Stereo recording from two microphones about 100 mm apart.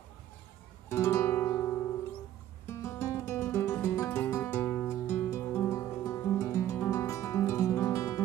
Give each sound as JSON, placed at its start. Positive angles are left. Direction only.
{"t": 0.8, "sound": "music", "side_deg": 25}